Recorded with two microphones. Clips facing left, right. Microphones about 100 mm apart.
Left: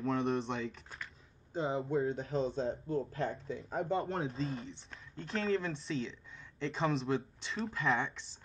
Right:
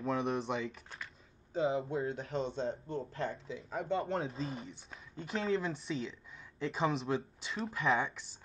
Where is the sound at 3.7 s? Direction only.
35° left (ahead or behind).